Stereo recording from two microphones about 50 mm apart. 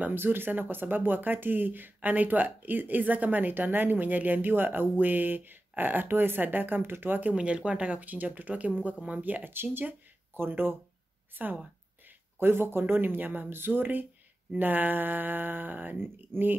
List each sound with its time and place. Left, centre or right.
0.0 s speech: right
7.3 s speech: right